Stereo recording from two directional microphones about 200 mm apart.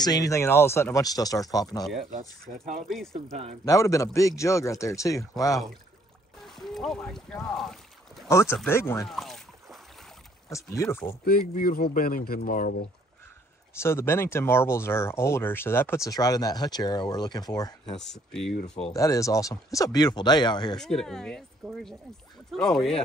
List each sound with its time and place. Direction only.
0.0 s speech: 20° left (ahead or behind)
3.6 s speech: 15° left (ahead or behind)
6.4 s boat: centre (ahead or behind)
8.3 s speech: 15° left (ahead or behind)
9.1 s rowboat: centre (ahead or behind)
10.5 s speech: 15° left (ahead or behind)
11.2 s speech: 50° left (ahead or behind)
13.7 s speech: 10° left (ahead or behind)
18.0 s speech: centre (ahead or behind)
18.9 s speech: 15° left (ahead or behind)
20.7 s speech: centre (ahead or behind)